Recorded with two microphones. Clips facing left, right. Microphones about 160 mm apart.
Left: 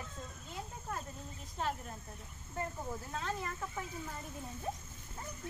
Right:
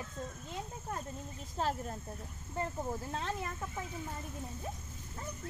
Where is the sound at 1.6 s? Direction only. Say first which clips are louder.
Right 3 dB; 35° right (ahead or behind).